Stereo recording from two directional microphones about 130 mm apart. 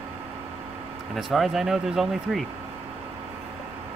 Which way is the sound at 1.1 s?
Centre (ahead or behind).